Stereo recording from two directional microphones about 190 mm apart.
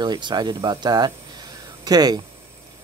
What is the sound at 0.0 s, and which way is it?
Speech, 25° right (ahead or behind).